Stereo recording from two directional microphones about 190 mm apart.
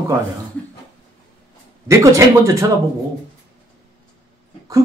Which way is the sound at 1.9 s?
15° right (ahead or behind).